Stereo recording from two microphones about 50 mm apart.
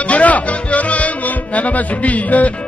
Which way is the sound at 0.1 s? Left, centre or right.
Left.